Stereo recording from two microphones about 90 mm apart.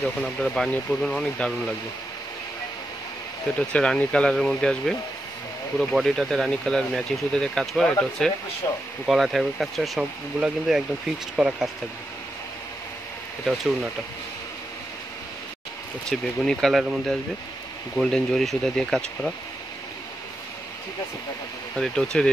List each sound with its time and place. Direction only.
0.2 s speech: 5° left (ahead or behind)
3.5 s speech: 10° left (ahead or behind)
8.6 s speech: 45° left (ahead or behind)
9.0 s speech: 5° right (ahead or behind)
16.1 s speech: 5° left (ahead or behind)
21.7 s speech: 5° left (ahead or behind)